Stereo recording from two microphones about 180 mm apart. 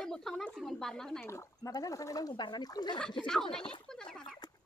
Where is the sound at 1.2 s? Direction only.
15° left (ahead or behind).